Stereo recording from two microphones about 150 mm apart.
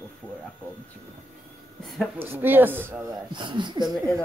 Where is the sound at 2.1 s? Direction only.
15° right (ahead or behind).